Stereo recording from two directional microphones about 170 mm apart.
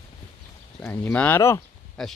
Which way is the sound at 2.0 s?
Centre (ahead or behind).